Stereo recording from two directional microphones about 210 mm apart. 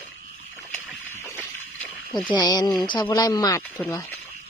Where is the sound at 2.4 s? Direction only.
20° left (ahead or behind).